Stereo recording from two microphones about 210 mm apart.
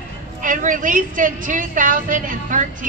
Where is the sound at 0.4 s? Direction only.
40° right (ahead or behind).